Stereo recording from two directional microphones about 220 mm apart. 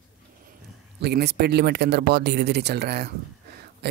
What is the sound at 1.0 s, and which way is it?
Speech, 50° right (ahead or behind).